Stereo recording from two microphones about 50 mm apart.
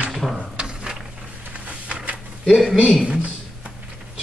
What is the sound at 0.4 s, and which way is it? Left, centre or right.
Drawer open or close, centre.